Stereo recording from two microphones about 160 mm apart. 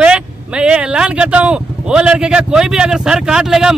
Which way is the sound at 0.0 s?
5° right (ahead or behind).